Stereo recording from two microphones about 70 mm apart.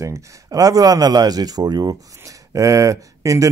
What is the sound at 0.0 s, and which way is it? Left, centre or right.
Speech, right.